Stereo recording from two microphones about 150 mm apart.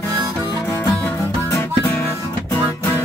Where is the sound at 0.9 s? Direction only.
5° left (ahead or behind).